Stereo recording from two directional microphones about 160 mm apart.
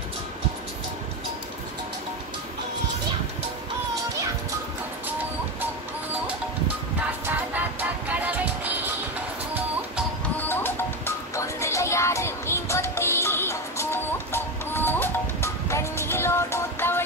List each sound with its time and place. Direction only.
7.0 s music: 10° right (ahead or behind)
10.4 s music: 15° left (ahead or behind)